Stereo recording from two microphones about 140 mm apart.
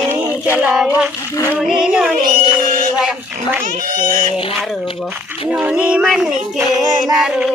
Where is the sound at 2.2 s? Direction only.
70° right (ahead or behind).